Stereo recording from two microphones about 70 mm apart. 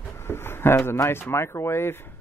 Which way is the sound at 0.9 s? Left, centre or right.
Left.